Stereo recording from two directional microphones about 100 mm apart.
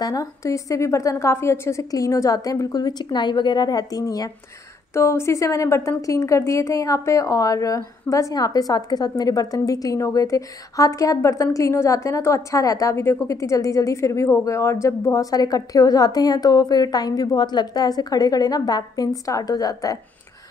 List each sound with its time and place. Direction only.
0.0 s a woman's voice: 35° left (ahead or behind)